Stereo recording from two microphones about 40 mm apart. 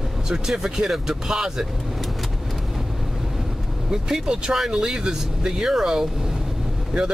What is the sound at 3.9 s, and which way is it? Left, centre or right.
Speech, centre.